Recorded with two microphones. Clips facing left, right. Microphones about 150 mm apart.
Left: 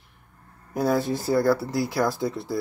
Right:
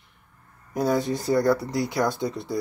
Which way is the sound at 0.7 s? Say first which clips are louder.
Even; centre (ahead or behind).